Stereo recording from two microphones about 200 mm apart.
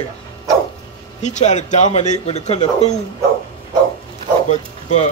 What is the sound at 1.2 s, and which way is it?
Speech, 35° left (ahead or behind).